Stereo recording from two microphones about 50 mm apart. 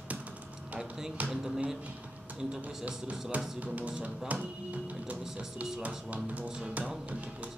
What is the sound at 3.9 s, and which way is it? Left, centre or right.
Speech, centre.